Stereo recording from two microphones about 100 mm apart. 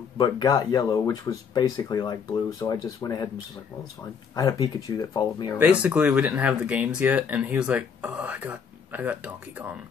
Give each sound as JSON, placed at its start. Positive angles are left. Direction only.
{"t": 0.2, "sound": "speech", "side_deg": 45}
{"t": 4.4, "sound": "speech", "side_deg": 40}
{"t": 5.6, "sound": "speech", "side_deg": -15}